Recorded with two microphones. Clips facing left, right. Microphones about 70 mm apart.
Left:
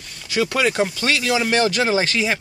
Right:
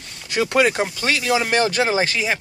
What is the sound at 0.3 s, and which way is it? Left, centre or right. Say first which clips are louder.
Speech: right 2 dB; right.